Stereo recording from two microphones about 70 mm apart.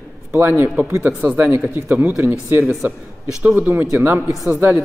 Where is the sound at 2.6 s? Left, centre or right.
Centre.